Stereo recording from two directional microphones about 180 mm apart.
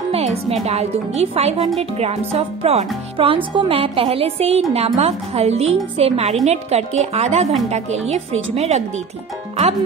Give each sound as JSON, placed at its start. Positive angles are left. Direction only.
{"t": 0.1, "sound": "music", "side_deg": -35}
{"t": 0.7, "sound": "a woman's voice", "side_deg": -35}